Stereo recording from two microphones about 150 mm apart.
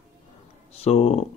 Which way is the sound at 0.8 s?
45° left (ahead or behind).